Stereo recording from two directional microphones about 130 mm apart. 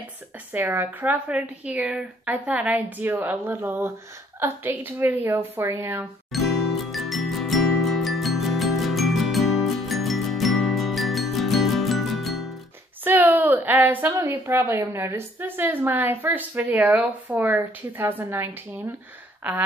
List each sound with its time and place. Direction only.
0.5 s a woman's voice: 15° right (ahead or behind)
6.3 s jingle: centre (ahead or behind)
13.0 s a woman's voice: 15° right (ahead or behind)